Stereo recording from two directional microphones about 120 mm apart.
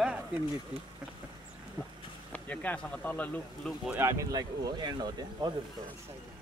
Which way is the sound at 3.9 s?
25° right (ahead or behind).